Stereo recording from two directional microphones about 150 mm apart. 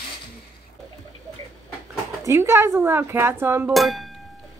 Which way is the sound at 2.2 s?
20° right (ahead or behind).